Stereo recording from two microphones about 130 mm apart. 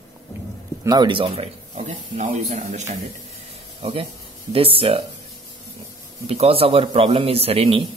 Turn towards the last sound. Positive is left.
turn(degrees=-50)  # may be behind; listen again after turning